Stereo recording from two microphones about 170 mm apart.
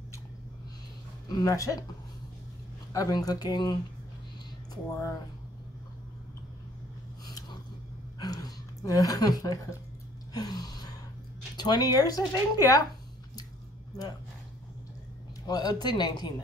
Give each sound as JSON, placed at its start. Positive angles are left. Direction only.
{"t": 1.3, "sound": "speech", "side_deg": 20}
{"t": 2.9, "sound": "speech", "side_deg": 20}
{"t": 7.2, "sound": "a sound", "side_deg": 25}
{"t": 11.5, "sound": "speech", "side_deg": 25}
{"t": 15.4, "sound": "speech", "side_deg": 25}